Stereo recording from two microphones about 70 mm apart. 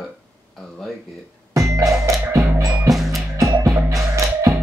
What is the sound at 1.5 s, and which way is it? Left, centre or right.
Music, right.